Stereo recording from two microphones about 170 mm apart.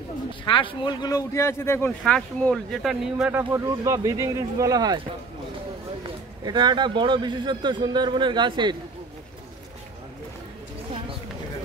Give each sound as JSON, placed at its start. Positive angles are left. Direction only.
{"t": 0.5, "sound": "speech", "side_deg": 30}
{"t": 3.3, "sound": "a man's voice", "side_deg": -15}
{"t": 6.0, "sound": "a man's voice", "side_deg": -25}